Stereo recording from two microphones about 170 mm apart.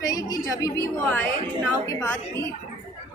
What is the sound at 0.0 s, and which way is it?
A woman's voice, 20° left (ahead or behind).